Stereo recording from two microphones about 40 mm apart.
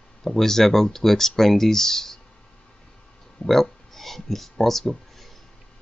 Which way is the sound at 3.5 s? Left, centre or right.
Centre.